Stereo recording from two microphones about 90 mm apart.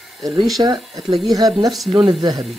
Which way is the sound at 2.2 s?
50° right (ahead or behind).